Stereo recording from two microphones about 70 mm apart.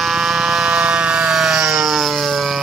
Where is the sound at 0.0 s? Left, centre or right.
Centre.